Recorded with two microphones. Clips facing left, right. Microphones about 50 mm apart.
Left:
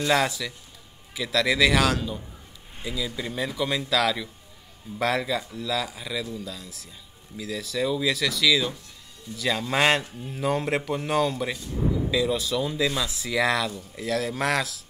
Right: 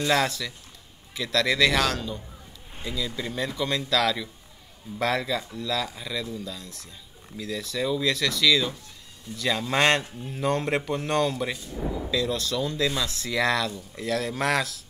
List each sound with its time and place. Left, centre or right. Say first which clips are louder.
0.0 s a man's voice: left 1 dB; centre